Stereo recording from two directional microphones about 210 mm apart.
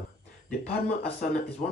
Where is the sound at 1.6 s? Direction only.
35° left (ahead or behind).